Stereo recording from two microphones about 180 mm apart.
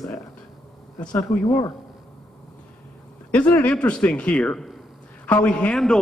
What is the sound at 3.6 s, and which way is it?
A man's voice, 5° left (ahead or behind).